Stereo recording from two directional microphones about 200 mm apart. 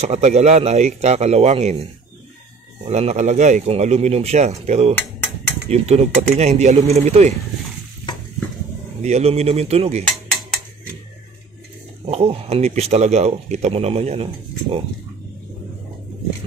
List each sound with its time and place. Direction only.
0.0 s speech: 35° right (ahead or behind)
2.9 s speech: 35° right (ahead or behind)
9.0 s speech: 30° right (ahead or behind)
12.1 s speech: 30° right (ahead or behind)